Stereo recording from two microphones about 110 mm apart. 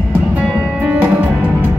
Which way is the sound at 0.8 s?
15° right (ahead or behind).